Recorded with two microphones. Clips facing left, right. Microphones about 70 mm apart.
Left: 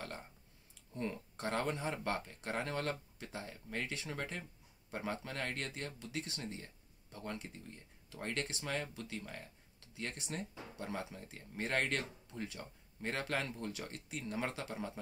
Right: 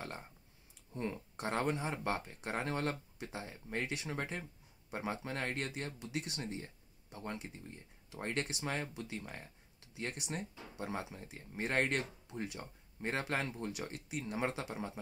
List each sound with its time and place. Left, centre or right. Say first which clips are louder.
0.9 s speech: right 1 dB; centre